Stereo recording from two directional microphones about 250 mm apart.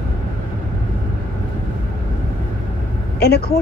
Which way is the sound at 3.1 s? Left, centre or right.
Left.